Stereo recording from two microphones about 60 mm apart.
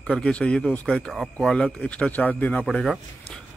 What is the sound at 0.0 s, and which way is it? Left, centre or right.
Speech, centre.